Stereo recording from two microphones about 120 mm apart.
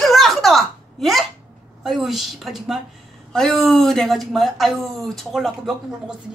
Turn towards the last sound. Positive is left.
turn(degrees=0)  # may be behind; listen again after turning